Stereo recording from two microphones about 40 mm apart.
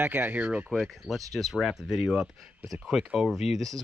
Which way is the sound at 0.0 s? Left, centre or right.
Right.